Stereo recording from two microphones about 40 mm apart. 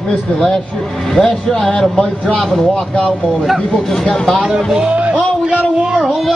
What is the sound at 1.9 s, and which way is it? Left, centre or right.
Speech, centre.